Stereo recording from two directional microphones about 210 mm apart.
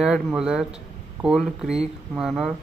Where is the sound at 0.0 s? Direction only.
Centre (ahead or behind).